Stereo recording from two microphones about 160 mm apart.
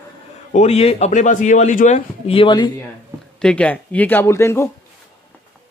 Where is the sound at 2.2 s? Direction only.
35° left (ahead or behind).